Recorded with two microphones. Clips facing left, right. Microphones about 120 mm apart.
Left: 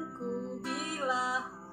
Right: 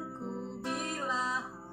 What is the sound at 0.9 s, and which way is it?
Music, 5° left (ahead or behind).